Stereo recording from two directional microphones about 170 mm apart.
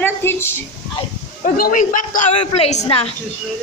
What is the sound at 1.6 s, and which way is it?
Speech, 50° left (ahead or behind).